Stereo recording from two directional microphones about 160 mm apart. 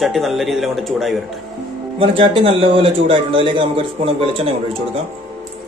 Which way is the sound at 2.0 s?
35° right (ahead or behind).